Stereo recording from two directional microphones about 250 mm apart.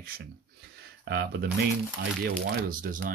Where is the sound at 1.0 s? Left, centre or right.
Right.